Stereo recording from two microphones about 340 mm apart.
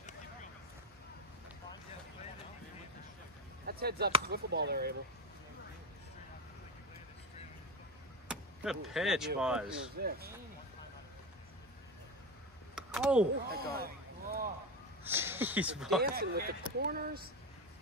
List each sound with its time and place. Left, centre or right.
3.6 s chop: right
4.3 s speech: right
8.3 s speech: centre
9.9 s speech: right
12.7 s a sound: centre
13.5 s speech: right
15.0 s speech: centre
16.0 s speech: right